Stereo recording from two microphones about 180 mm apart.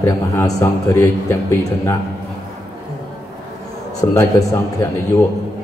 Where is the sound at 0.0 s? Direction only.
15° left (ahead or behind).